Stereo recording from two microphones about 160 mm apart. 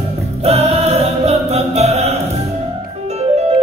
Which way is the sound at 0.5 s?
40° right (ahead or behind).